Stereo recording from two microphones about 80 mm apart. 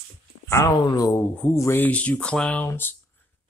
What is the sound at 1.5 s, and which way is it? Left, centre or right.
Speech, left.